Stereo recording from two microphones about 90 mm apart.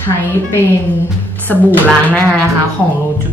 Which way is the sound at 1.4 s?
20° left (ahead or behind).